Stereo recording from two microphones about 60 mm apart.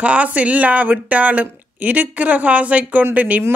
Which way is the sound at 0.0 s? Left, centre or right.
Right.